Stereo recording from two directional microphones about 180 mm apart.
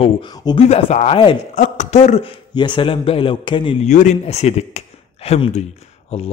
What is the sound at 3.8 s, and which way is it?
Speech, 40° left (ahead or behind).